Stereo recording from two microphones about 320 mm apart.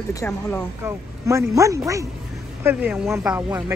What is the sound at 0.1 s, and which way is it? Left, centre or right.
Speech, centre.